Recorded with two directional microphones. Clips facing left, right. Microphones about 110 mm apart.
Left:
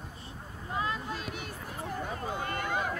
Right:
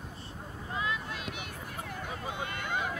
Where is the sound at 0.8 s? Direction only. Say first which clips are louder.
Left 2 dB; 35° left (ahead or behind).